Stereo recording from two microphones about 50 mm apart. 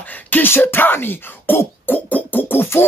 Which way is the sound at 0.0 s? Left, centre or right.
Left.